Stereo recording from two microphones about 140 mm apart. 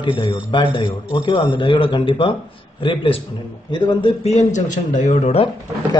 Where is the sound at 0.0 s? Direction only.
35° left (ahead or behind).